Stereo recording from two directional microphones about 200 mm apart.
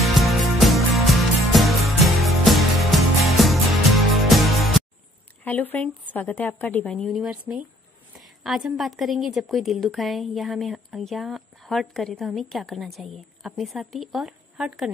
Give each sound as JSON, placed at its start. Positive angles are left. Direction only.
{"t": 0.0, "sound": "music", "side_deg": 0}
{"t": 5.4, "sound": "a woman's voice", "side_deg": 10}